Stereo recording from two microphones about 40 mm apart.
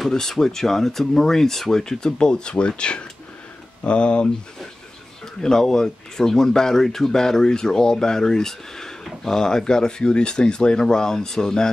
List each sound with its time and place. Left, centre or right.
0.1 s speech: centre
5.4 s speech: centre